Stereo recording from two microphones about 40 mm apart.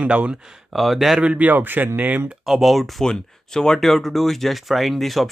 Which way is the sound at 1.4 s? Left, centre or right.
Right.